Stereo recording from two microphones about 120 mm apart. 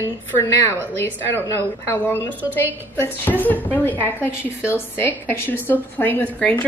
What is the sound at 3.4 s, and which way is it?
A woman's voice, 15° left (ahead or behind).